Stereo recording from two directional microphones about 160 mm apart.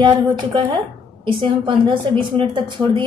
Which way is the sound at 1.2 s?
30° right (ahead or behind).